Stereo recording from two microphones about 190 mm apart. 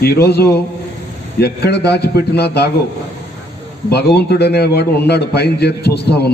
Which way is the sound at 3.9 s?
60° left (ahead or behind).